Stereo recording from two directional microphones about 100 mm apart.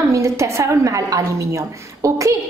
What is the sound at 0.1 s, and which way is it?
A woman's voice, 30° right (ahead or behind).